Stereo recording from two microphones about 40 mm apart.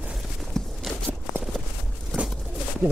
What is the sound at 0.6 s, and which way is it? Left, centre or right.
Walk, centre.